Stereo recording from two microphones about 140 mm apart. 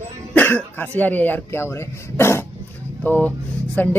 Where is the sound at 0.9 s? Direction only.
10° left (ahead or behind).